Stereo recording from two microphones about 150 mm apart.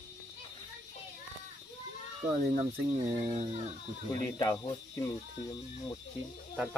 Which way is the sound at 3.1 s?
40° right (ahead or behind).